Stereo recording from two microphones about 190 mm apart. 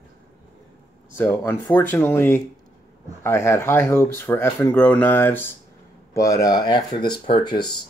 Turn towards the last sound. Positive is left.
turn(degrees=25)  # may be behind; listen again after turning